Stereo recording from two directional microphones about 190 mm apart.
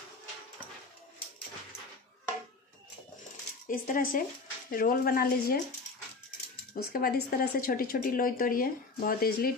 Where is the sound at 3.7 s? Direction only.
45° left (ahead or behind).